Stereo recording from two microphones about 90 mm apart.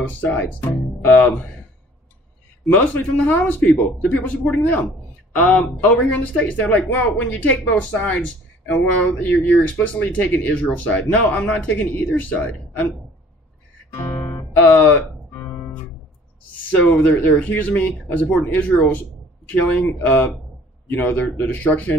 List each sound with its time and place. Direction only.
0.1 s speech: 15° left (ahead or behind)
2.7 s a man's voice: 15° left (ahead or behind)
14.1 s music: 20° left (ahead or behind)
16.7 s a man's voice: 15° left (ahead or behind)